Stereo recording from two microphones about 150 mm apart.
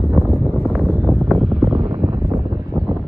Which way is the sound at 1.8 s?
30° right (ahead or behind).